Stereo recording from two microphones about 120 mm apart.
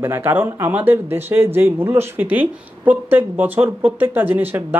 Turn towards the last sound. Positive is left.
turn(degrees=-15)  # may be behind; listen again after turning